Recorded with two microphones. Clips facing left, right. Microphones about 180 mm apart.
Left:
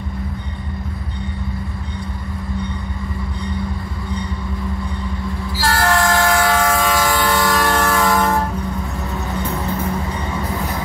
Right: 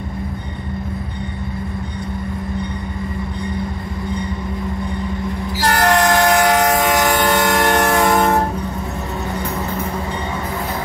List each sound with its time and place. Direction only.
5.6 s train: 20° right (ahead or behind)